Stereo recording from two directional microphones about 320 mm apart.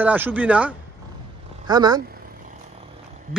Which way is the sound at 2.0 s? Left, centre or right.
Right.